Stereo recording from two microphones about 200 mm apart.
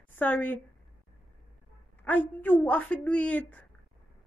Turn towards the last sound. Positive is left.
turn(degrees=5)  # may be behind; listen again after turning